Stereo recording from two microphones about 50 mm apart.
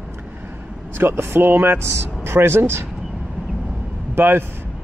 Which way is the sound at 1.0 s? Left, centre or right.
Right.